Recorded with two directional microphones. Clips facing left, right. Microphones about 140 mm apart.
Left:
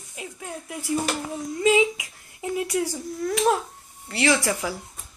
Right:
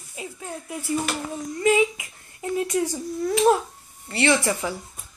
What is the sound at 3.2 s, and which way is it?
Speech, centre (ahead or behind).